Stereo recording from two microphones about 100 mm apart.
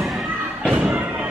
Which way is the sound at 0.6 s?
10° right (ahead or behind).